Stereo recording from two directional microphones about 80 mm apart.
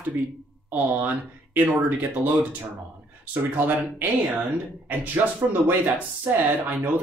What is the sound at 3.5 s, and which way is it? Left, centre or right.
Speech, right.